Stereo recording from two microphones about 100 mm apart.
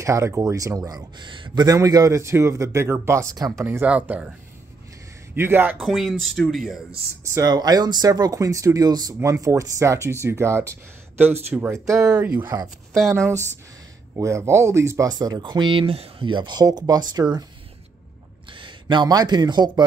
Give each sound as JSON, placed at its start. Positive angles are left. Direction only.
{"t": 0.0, "sound": "speech", "side_deg": -30}
{"t": 3.3, "sound": "speech", "side_deg": -40}
{"t": 3.8, "sound": "speech", "side_deg": -15}
{"t": 5.3, "sound": "speech", "side_deg": -20}
{"t": 5.8, "sound": "speech", "side_deg": 0}
{"t": 7.2, "sound": "speech", "side_deg": -30}
{"t": 7.5, "sound": "speech", "side_deg": -40}
{"t": 15.1, "sound": "speech", "side_deg": -40}
{"t": 18.5, "sound": "speech", "side_deg": -55}